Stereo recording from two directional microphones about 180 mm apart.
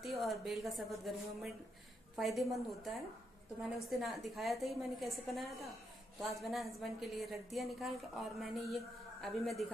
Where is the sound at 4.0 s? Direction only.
Centre (ahead or behind).